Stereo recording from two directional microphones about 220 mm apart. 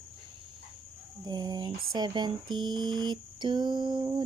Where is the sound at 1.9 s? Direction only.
20° right (ahead or behind).